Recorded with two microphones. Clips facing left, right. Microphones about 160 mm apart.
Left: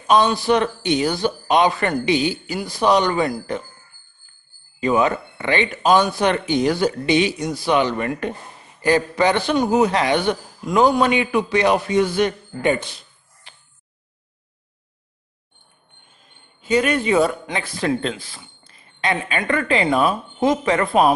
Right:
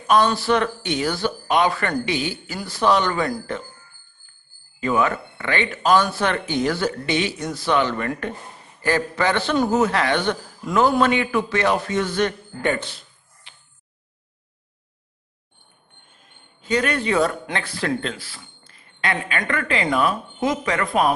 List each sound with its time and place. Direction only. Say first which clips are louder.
0.0 s speech: left 1 dB; 20° left (ahead or behind)
4.7 s speech: left 3 dB; 20° left (ahead or behind)
13.5 s a sound: left 3 dB; 40° left (ahead or behind)
16.6 s speech: left 3 dB; 10° left (ahead or behind); by 21.1 s 30° left (ahead or behind)